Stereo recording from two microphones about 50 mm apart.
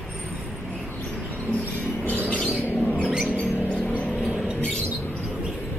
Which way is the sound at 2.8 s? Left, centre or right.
Left.